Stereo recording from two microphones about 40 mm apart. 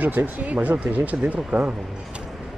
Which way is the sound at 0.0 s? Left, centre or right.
Right.